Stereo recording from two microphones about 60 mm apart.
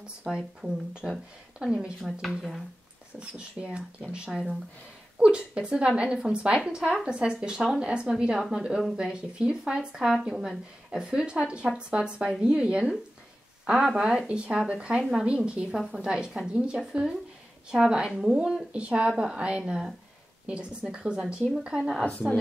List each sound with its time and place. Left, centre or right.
0.0 s a woman's voice: centre
2.0 s speech: centre
3.2 s a woman's voice: centre
8.4 s a woman's voice: centre
20.9 s a woman's voice: centre